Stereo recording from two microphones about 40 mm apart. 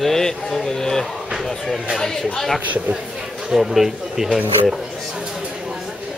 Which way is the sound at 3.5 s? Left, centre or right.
Centre.